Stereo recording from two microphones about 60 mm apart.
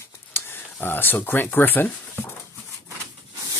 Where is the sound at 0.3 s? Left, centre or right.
Left.